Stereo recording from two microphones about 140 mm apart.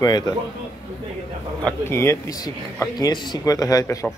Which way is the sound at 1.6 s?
15° left (ahead or behind).